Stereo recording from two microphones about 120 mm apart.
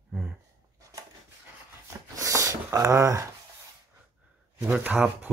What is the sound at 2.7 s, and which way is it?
Speech, 25° right (ahead or behind).